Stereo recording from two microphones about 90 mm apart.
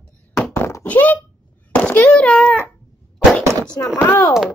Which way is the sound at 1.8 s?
20° left (ahead or behind).